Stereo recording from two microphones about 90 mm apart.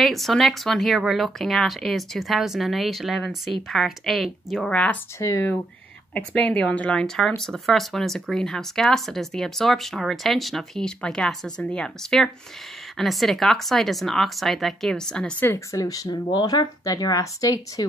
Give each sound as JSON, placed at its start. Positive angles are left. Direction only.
{"t": 0.0, "sound": "speech", "side_deg": 0}
{"t": 4.6, "sound": "a woman's voice", "side_deg": 10}
{"t": 6.1, "sound": "speech", "side_deg": 10}
{"t": 15.4, "sound": "speech", "side_deg": 30}